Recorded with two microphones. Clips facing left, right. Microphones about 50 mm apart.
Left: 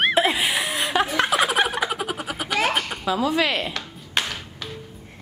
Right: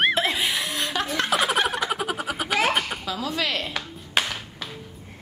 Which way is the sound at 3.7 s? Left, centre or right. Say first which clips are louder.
Right 1 dB; centre.